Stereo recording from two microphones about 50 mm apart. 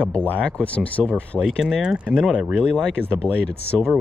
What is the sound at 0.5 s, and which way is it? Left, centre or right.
Speech, left.